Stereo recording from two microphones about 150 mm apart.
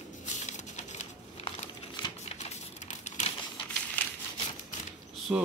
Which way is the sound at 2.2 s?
50° left (ahead or behind).